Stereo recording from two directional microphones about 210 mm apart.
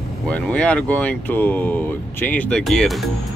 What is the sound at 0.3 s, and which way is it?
Speech, 5° left (ahead or behind).